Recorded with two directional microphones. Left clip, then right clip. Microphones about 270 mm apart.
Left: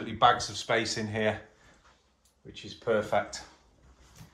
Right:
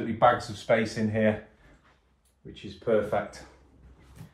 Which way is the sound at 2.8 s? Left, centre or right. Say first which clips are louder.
Right 2 dB; centre.